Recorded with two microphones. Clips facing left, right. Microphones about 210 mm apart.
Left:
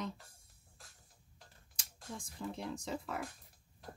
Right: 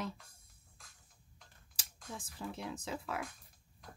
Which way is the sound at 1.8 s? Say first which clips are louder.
Left 1 dB; 5° right (ahead or behind).